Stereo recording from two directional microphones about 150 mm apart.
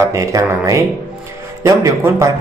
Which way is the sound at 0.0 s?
20° right (ahead or behind).